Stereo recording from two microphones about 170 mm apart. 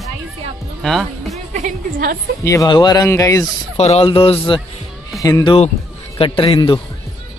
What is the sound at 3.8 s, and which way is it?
Speech, 40° left (ahead or behind).